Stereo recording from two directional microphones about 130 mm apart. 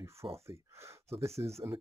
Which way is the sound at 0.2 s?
40° right (ahead or behind).